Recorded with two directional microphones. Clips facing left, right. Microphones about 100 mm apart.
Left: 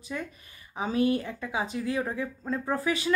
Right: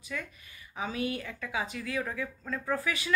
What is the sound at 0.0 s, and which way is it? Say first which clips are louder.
A woman's voice: left 4 dB; 25° left (ahead or behind).